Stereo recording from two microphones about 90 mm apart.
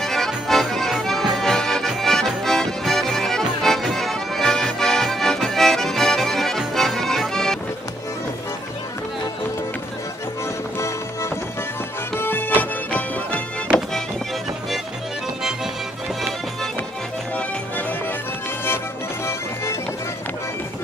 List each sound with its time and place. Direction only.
0.0 s accordion: 5° left (ahead or behind)
12.2 s music: 20° left (ahead or behind)
19.2 s music: 30° left (ahead or behind)